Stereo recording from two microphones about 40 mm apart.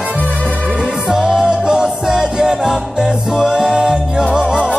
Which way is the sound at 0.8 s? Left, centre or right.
Centre.